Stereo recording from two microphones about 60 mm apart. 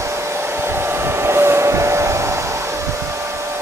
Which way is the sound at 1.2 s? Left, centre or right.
Right.